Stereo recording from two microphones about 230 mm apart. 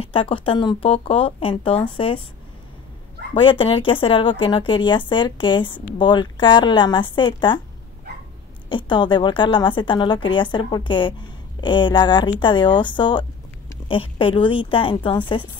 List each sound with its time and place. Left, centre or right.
0.0 s speech: left
3.3 s speech: left
8.6 s speech: left